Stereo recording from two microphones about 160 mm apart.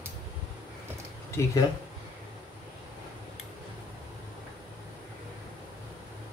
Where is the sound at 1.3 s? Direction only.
20° left (ahead or behind).